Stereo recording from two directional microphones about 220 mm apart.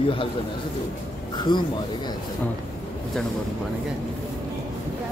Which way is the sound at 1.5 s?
20° left (ahead or behind).